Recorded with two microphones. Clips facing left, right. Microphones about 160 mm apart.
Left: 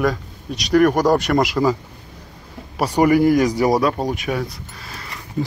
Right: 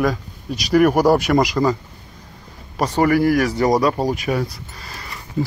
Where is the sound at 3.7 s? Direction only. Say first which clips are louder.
Right 1 dB; centre (ahead or behind).